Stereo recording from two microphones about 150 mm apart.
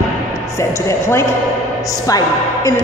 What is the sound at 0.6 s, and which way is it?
A woman's voice, 20° left (ahead or behind).